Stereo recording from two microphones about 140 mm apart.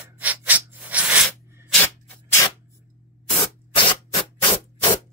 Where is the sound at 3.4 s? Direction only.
35° left (ahead or behind).